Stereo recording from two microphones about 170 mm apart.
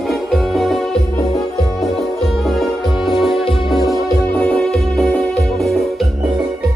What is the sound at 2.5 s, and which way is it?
Music, centre (ahead or behind).